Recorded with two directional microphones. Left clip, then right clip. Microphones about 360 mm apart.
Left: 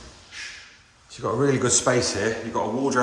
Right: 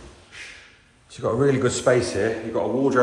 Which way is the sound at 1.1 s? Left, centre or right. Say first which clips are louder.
Right 2 dB; centre.